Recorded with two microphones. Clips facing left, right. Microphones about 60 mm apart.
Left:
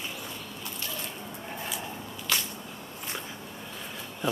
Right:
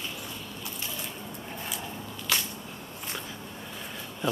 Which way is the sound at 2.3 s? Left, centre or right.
Centre.